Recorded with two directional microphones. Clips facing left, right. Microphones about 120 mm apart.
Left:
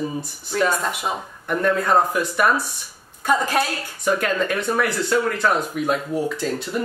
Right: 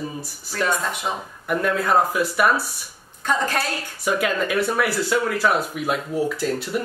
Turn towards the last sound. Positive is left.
turn(degrees=-5)  # may be behind; listen again after turning